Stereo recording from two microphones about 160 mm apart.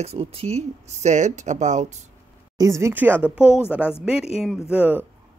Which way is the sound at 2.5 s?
20° right (ahead or behind).